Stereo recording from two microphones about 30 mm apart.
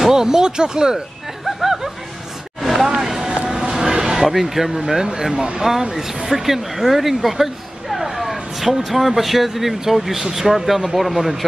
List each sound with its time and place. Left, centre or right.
0.1 s speech: centre
1.6 s music: centre
3.0 s vehicle: centre
3.4 s a sound: centre
4.3 s speech: centre
5.0 s speech: centre